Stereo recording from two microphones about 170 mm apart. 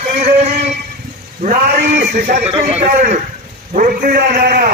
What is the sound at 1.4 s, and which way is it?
A man's voice, 55° right (ahead or behind).